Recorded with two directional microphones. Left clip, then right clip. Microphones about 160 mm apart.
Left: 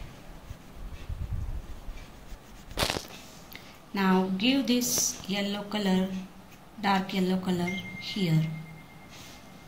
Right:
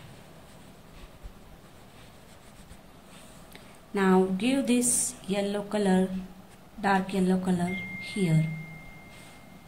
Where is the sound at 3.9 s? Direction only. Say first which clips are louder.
Right 3 dB; 65° right (ahead or behind).